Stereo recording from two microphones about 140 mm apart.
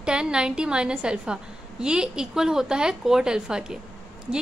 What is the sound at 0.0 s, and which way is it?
A woman's voice, 5° right (ahead or behind).